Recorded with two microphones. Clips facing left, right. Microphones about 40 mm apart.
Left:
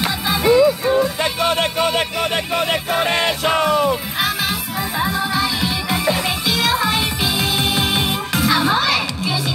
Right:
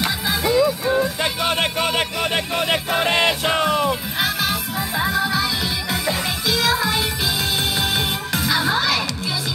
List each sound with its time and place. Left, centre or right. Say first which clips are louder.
0.0 s music: left 3 dB; centre
1.0 s music: left 3 dB; centre
2.1 s speech: left 2 dB; centre
2.7 s music: right 1 dB; centre